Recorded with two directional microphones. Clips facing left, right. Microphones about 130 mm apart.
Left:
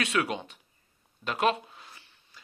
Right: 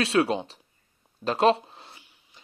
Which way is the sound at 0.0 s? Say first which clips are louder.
Right 6 dB; 30° right (ahead or behind).